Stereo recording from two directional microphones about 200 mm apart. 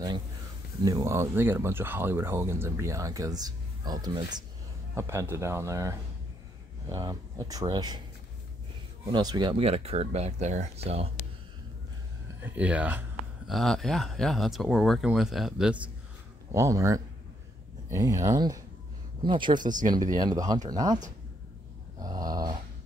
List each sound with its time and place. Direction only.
0.8 s speech: 15° right (ahead or behind)
9.1 s speech: 20° right (ahead or behind)
12.4 s speech: 10° right (ahead or behind)
22.0 s speech: 20° right (ahead or behind)